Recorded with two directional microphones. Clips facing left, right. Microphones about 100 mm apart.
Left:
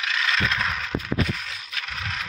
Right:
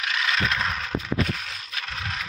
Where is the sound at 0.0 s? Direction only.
20° right (ahead or behind).